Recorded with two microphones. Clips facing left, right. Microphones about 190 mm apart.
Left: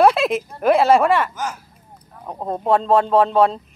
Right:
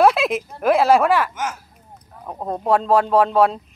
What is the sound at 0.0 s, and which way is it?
Speech, centre (ahead or behind).